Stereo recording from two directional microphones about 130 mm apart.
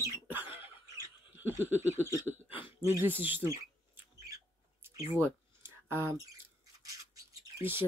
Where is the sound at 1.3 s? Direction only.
15° right (ahead or behind).